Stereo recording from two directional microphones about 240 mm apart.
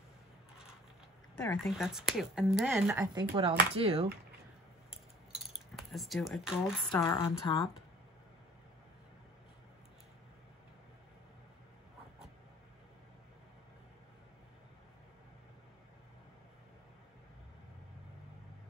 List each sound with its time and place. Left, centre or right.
1.3 s speech: centre
3.2 s speech: right
5.8 s speech: centre
7.0 s a woman's voice: centre